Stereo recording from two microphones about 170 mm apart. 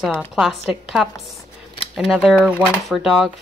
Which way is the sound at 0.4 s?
Centre (ahead or behind).